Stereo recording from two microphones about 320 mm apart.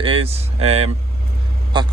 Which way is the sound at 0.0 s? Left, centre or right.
Centre.